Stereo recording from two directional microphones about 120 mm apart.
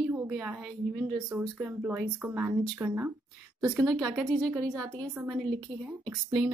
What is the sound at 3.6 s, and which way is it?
A woman's voice, 30° right (ahead or behind).